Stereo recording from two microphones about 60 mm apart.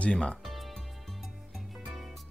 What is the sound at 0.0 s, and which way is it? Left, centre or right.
Speech, centre.